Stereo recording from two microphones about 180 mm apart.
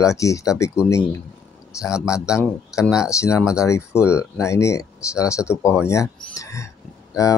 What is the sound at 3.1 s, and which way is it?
Speech, 15° left (ahead or behind).